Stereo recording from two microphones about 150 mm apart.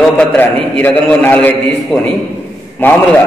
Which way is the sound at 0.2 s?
10° left (ahead or behind).